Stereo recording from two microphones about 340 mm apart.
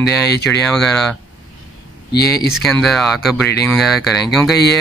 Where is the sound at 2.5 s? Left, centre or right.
Centre.